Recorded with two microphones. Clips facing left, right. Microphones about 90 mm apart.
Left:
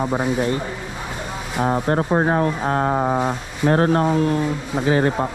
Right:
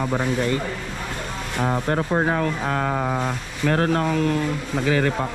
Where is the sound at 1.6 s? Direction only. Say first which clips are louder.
Left 3 dB; 40° left (ahead or behind).